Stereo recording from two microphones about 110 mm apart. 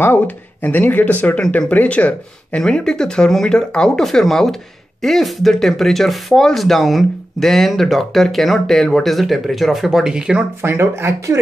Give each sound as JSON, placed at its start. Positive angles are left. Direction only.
{"t": 0.0, "sound": "speech", "side_deg": 15}
{"t": 10.6, "sound": "speech", "side_deg": -20}